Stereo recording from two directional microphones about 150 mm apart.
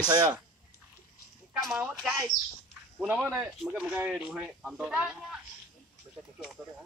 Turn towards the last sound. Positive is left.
turn(degrees=-5)  # may be behind; listen again after turning